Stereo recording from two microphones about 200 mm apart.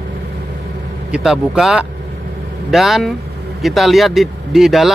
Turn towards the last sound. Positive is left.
turn(degrees=0)  # may be behind; listen again after turning